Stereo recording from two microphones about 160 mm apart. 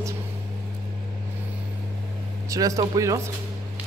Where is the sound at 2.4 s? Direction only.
20° right (ahead or behind).